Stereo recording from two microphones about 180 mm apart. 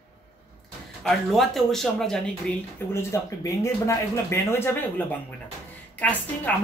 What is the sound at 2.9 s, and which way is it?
Speech, 15° left (ahead or behind).